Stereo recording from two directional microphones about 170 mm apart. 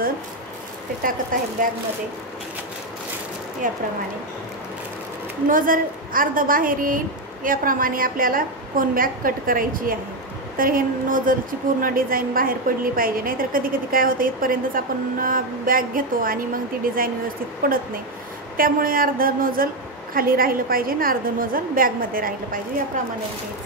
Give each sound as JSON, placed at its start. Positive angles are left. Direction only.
{"t": 1.3, "sound": "speech", "side_deg": -55}
{"t": 3.6, "sound": "speech", "side_deg": -55}
{"t": 5.5, "sound": "a woman's voice", "side_deg": -55}